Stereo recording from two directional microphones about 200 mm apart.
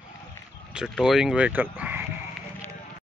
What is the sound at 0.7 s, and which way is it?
Sheep, centre (ahead or behind).